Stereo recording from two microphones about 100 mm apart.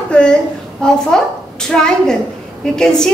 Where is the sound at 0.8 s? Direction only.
10° left (ahead or behind).